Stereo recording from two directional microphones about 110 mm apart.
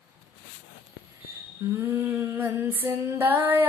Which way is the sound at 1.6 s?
25° right (ahead or behind).